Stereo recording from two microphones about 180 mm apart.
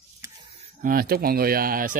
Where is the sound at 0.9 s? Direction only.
55° right (ahead or behind).